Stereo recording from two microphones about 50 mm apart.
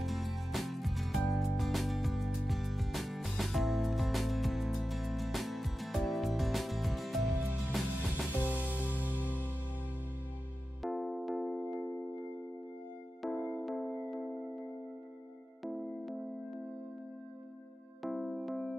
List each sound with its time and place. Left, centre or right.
0.0 s music: centre
9.1 s music: left
10.8 s music: centre
13.4 s music: left
13.7 s music: centre
18.0 s music: centre